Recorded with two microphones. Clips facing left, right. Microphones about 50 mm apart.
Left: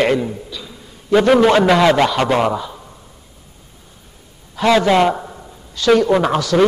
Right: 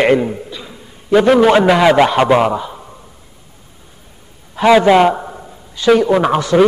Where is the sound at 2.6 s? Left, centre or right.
Centre.